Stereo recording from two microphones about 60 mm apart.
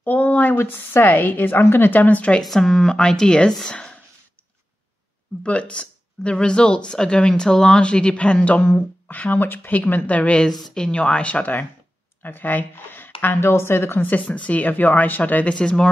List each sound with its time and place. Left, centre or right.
0.0 s speech: left
0.6 s a woman's voice: left
2.4 s speech: centre
5.4 s speech: centre
12.2 s speech: left
14.0 s speech: left
15.5 s speech: centre